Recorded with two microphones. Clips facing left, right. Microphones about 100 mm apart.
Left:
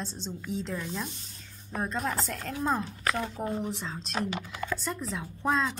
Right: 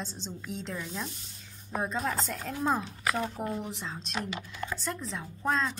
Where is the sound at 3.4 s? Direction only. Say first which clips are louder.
Left 2 dB; 35° left (ahead or behind).